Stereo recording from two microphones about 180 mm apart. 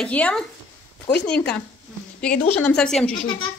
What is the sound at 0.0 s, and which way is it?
Speech, 5° left (ahead or behind).